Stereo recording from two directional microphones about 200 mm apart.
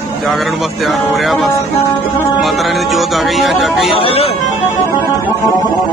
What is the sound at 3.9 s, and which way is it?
Speech, 30° left (ahead or behind).